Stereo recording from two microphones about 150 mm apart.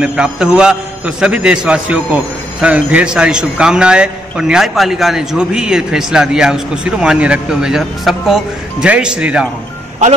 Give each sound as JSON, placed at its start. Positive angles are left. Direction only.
{"t": 0.0, "sound": "a man's voice", "side_deg": -5}